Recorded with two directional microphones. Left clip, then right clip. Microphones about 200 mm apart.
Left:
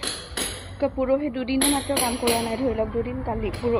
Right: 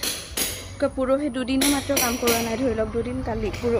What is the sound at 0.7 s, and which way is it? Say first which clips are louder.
Speech: even; 20° right (ahead or behind).